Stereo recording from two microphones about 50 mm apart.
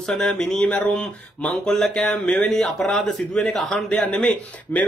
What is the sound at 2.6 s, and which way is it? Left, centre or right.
Speech, centre.